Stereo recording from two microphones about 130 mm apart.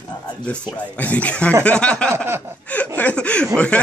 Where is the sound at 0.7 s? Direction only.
10° left (ahead or behind).